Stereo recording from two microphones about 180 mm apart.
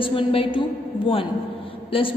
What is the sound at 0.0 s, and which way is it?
Speech, 30° left (ahead or behind).